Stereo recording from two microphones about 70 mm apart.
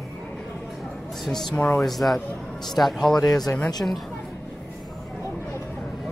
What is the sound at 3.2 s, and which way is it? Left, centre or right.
Speech, left.